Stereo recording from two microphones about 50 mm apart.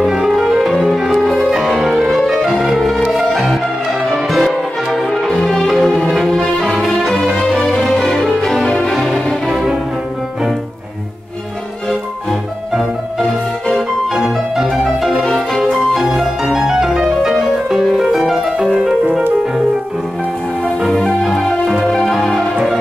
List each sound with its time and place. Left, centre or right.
0.0 s music: centre
4.3 s music: centre
8.9 s music: centre
13.2 s music: centre
15.9 s music: centre
20.8 s music: centre